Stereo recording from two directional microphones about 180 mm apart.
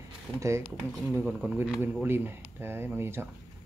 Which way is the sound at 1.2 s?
5° right (ahead or behind).